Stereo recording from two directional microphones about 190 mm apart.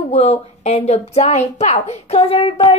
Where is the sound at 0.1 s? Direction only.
35° left (ahead or behind).